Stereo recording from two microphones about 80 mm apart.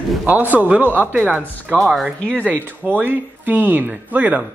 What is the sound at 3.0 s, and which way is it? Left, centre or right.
Speech, right.